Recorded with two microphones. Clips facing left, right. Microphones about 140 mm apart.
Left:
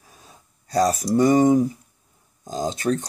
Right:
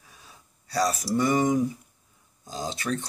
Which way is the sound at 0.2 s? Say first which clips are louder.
Left 3 dB; 40° left (ahead or behind).